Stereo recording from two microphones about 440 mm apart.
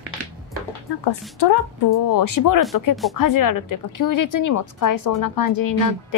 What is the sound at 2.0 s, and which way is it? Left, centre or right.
A woman's voice, left.